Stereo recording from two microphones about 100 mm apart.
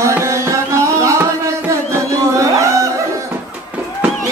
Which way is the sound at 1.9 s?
30° right (ahead or behind).